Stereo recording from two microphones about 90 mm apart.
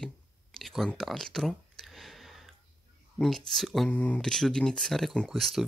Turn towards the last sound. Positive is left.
turn(degrees=0)  # may be behind; listen again after turning